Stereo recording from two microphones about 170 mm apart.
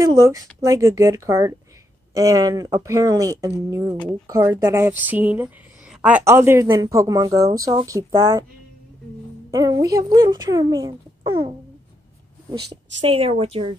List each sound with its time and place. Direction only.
0.0 s speech: 15° right (ahead or behind)
9.5 s speech: 20° right (ahead or behind)
13.0 s a woman's voice: 35° right (ahead or behind)